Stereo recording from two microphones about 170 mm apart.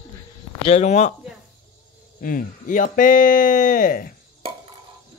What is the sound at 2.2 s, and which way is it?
Speech, 55° left (ahead or behind).